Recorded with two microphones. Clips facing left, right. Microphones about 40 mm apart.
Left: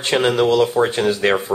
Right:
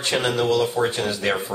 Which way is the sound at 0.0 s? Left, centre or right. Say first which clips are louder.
Left 5 dB; left.